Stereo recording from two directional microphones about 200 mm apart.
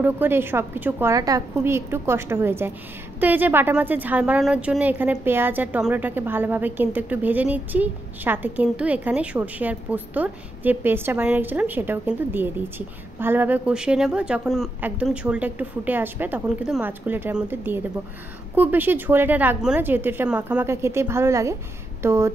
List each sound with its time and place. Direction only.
0.0 s a woman's voice: 10° right (ahead or behind)